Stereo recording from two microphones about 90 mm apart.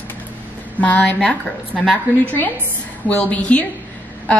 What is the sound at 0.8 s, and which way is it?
A woman's voice, 15° left (ahead or behind).